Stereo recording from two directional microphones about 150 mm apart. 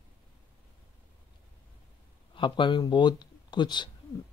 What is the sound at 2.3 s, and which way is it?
Speech, 35° left (ahead or behind).